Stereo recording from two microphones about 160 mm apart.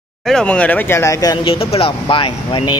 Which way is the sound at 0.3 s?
5° left (ahead or behind).